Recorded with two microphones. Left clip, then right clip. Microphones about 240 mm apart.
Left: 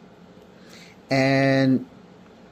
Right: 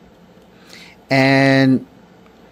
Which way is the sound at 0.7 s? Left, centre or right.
Centre.